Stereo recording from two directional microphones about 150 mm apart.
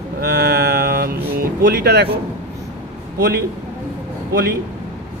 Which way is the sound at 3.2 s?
90° right.